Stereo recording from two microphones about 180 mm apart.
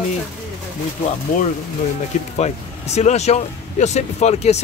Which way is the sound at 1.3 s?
50° left (ahead or behind).